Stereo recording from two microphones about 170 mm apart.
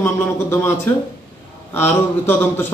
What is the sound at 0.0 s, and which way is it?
A man's voice, 15° left (ahead or behind).